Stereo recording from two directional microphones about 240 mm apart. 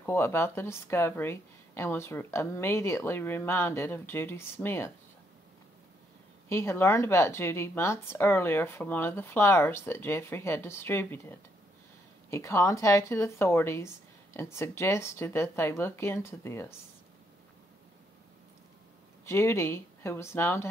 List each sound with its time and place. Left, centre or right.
0.0 s speech: centre
6.5 s speech: centre
19.2 s speech: centre